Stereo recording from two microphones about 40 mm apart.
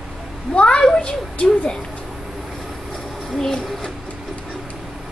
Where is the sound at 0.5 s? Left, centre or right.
Left.